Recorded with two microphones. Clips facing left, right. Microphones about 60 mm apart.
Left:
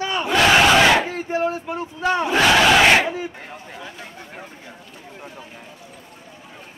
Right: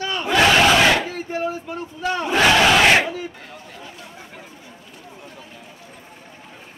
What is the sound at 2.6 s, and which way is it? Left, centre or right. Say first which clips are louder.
Crowd: left 2 dB; centre.